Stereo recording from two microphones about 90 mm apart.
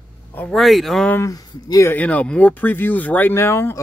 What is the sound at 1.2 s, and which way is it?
Speech, 35° left (ahead or behind).